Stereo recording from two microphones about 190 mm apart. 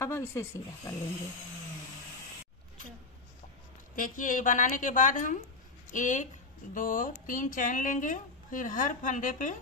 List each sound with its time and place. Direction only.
0.0 s speech: 15° left (ahead or behind)
3.9 s speech: 45° left (ahead or behind)